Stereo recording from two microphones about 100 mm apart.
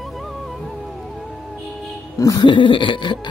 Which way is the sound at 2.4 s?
55° left (ahead or behind).